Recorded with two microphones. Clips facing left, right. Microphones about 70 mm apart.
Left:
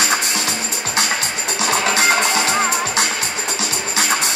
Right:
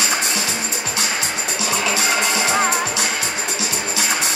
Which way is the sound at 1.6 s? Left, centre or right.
Left.